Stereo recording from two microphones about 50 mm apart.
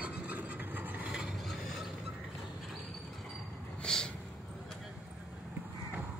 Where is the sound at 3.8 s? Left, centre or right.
Centre.